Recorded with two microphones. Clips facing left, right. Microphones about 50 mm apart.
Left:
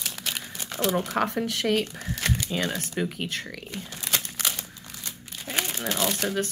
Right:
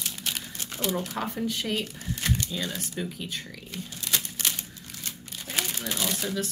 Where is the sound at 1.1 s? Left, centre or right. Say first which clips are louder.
Left 4 dB; left.